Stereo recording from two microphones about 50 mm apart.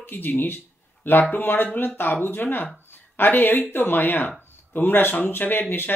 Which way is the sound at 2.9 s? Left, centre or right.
Left.